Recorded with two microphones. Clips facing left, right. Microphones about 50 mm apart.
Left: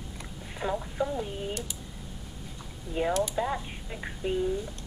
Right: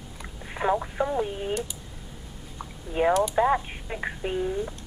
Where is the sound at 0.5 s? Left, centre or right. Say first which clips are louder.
Right 5 dB; right.